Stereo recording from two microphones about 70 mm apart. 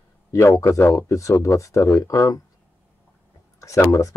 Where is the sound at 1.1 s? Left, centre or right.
Left.